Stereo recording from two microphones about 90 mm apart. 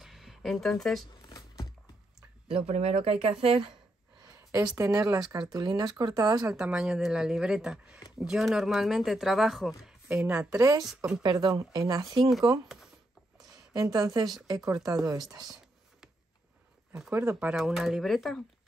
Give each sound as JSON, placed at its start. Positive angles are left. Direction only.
{"t": 0.0, "sound": "a sound", "side_deg": -5}
{"t": 2.5, "sound": "speech", "side_deg": -90}
{"t": 4.2, "sound": "a sound", "side_deg": -35}
{"t": 4.7, "sound": "speech", "side_deg": -40}
{"t": 6.5, "sound": "a woman's voice", "side_deg": -10}
{"t": 10.6, "sound": "speech", "side_deg": -45}
{"t": 13.9, "sound": "speech", "side_deg": -45}
{"t": 14.6, "sound": "speech", "side_deg": -5}
{"t": 14.9, "sound": "speech", "side_deg": -40}
{"t": 17.1, "sound": "speech", "side_deg": -25}
{"t": 17.6, "sound": "speech", "side_deg": -5}